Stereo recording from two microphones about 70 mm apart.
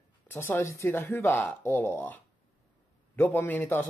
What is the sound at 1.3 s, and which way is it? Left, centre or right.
A man's voice, left.